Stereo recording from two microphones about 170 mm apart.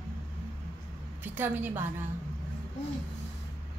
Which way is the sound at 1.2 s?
10° right (ahead or behind).